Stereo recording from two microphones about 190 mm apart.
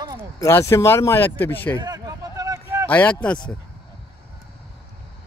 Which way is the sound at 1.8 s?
20° right (ahead or behind).